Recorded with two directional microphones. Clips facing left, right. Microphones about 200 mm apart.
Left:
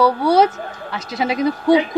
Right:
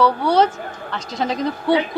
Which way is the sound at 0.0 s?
10° left (ahead or behind).